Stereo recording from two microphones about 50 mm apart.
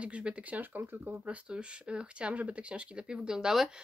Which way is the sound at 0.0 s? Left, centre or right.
Right.